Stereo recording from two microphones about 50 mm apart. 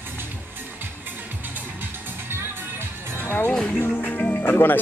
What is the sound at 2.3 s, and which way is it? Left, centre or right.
Music, right.